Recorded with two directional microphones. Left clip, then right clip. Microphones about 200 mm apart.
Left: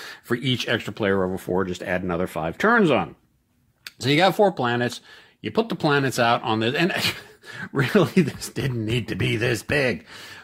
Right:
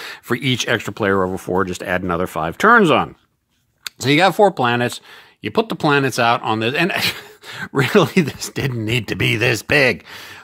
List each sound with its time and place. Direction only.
0.0 s speech: 30° right (ahead or behind)